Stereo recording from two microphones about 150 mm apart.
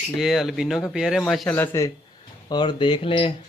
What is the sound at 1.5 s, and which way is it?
Speech, 20° left (ahead or behind).